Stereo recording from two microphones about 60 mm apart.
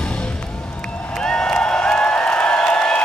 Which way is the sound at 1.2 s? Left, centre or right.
Centre.